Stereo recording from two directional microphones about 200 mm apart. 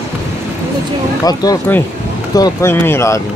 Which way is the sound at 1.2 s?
20° left (ahead or behind).